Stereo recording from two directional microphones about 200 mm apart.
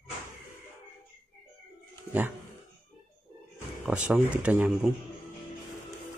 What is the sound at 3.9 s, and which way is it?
Speech, 5° right (ahead or behind).